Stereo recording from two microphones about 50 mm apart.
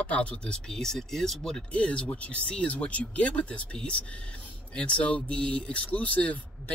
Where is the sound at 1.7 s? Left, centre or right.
Left.